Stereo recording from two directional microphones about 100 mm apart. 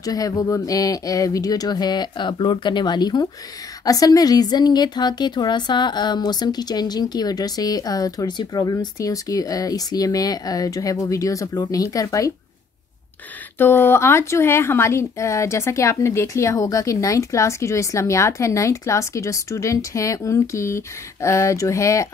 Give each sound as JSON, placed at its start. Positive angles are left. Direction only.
{"t": 0.0, "sound": "speech", "side_deg": 40}
{"t": 13.6, "sound": "speech", "side_deg": 25}